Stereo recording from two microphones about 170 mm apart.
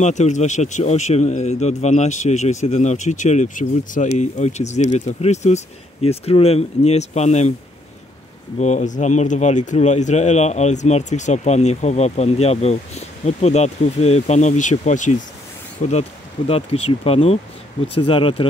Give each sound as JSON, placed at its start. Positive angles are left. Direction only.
{"t": 0.0, "sound": "speech", "side_deg": 45}
{"t": 8.5, "sound": "speech", "side_deg": 45}